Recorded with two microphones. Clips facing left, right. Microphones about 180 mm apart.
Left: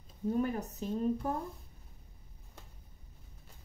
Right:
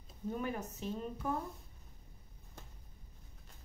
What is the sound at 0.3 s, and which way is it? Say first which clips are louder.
A woman's voice: left 6 dB; 40° left (ahead or behind).